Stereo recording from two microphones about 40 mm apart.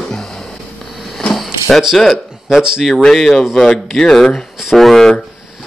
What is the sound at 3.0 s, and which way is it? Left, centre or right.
Speech, centre.